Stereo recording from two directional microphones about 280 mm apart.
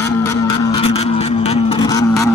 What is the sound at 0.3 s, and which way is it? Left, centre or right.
Vehicle, centre.